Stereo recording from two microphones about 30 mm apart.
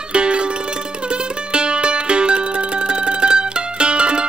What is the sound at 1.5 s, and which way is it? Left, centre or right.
Music, right.